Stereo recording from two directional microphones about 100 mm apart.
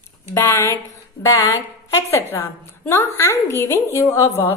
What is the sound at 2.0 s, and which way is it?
A woman's voice, 30° left (ahead or behind).